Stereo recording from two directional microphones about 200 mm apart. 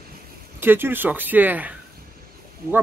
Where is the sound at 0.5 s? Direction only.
10° right (ahead or behind).